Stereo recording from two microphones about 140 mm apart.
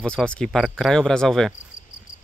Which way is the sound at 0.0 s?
5° left (ahead or behind).